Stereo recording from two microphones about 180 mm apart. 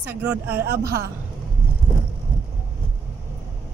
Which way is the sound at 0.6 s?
60° right (ahead or behind).